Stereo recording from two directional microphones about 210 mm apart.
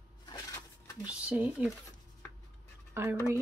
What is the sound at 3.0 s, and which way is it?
Speech, 10° right (ahead or behind).